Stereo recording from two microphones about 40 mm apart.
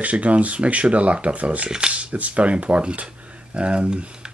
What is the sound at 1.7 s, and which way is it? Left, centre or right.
Speech, right.